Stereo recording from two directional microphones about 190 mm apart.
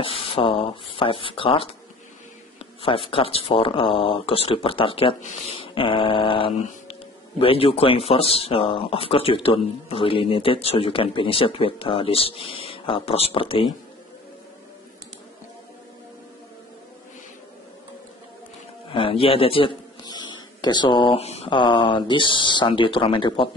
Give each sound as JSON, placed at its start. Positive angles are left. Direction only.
{"t": 0.0, "sound": "speech", "side_deg": 30}
{"t": 2.6, "sound": "a sound", "side_deg": 30}
{"t": 3.1, "sound": "speech", "side_deg": 30}
{"t": 5.6, "sound": "mantra", "side_deg": 25}
{"t": 6.6, "sound": "speech", "side_deg": 30}
{"t": 18.9, "sound": "a man's voice", "side_deg": 30}